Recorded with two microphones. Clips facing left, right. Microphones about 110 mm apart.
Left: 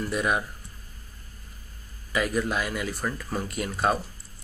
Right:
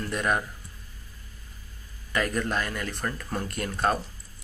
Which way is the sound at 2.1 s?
5° left (ahead or behind).